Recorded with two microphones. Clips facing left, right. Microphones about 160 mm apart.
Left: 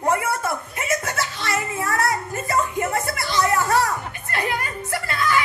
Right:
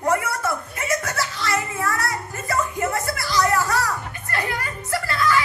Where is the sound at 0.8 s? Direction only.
25° left (ahead or behind).